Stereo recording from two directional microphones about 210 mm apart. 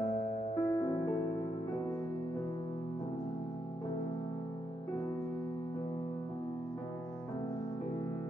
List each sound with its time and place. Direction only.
0.0 s music: 30° left (ahead or behind)